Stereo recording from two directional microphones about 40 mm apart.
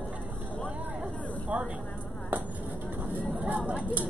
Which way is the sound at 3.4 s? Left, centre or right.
Right.